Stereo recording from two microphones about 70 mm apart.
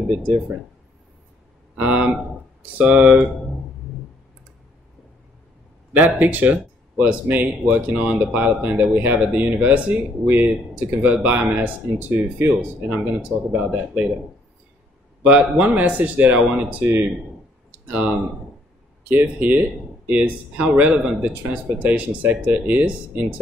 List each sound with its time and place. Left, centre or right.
1.8 s speech: right
5.9 s speech: right
15.2 s speech: right
17.6 s a sound: centre
19.0 s speech: right